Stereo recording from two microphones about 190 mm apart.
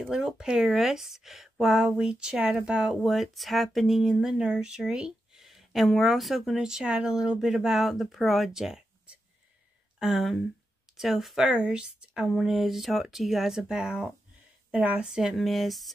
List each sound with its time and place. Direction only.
0.0 s speech: 5° right (ahead or behind)